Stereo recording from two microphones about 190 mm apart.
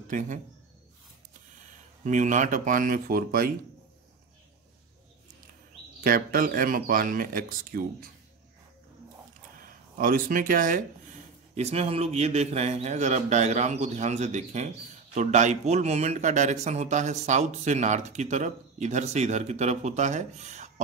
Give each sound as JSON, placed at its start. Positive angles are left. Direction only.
{"t": 0.1, "sound": "speech", "side_deg": -45}
{"t": 2.0, "sound": "speech", "side_deg": -40}
{"t": 5.9, "sound": "speech", "side_deg": -50}
{"t": 9.6, "sound": "speech", "side_deg": -45}
{"t": 11.5, "sound": "a man's voice", "side_deg": -35}